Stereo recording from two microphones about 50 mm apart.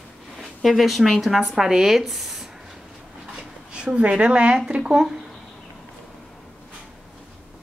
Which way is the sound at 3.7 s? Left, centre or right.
Right.